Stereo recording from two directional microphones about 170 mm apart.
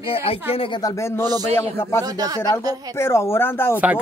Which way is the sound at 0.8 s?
20° left (ahead or behind).